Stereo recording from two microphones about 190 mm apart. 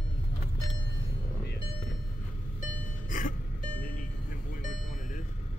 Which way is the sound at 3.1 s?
45° left (ahead or behind).